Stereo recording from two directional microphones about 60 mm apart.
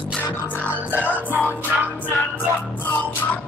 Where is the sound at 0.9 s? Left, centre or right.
Left.